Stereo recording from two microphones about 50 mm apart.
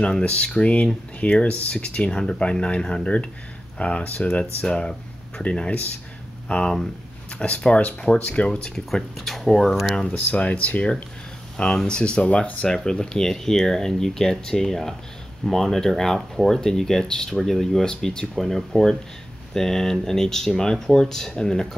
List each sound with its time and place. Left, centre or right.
0.0 s speech: left
9.1 s speech: centre
10.1 s speech: left
11.5 s speech: centre
12.6 s speech: centre